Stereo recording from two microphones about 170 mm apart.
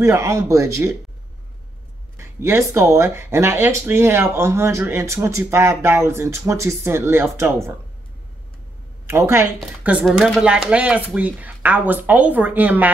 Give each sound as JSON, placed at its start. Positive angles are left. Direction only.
{"t": 0.0, "sound": "speech", "side_deg": -15}
{"t": 2.1, "sound": "speech", "side_deg": -15}
{"t": 9.0, "sound": "speech", "side_deg": -15}